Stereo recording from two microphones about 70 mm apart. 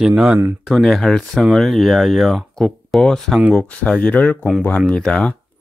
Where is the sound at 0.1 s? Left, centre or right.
Right.